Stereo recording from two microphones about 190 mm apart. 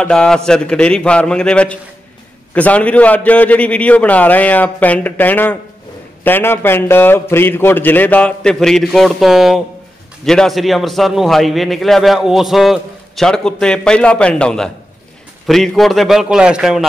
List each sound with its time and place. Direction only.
0.0 s a man's voice: 5° left (ahead or behind)